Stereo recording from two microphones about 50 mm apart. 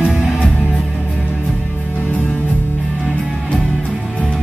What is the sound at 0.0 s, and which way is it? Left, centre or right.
Music, right.